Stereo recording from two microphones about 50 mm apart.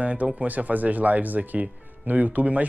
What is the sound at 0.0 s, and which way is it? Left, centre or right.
Speech, right.